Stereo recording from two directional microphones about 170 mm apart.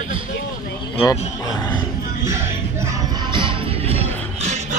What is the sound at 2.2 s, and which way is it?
Music, 15° right (ahead or behind).